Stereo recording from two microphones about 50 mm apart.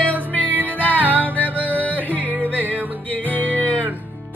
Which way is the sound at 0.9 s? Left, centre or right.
Right.